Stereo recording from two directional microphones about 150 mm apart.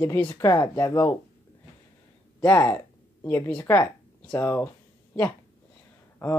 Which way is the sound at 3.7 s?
15° left (ahead or behind).